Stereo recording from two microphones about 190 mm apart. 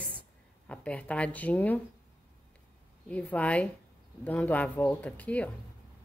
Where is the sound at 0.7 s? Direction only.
5° left (ahead or behind).